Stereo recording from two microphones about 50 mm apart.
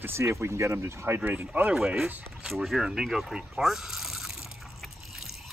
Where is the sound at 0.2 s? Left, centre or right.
Right.